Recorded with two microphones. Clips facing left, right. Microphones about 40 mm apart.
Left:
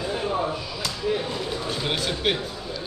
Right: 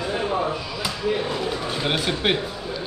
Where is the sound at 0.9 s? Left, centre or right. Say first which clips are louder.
Right 2 dB; centre.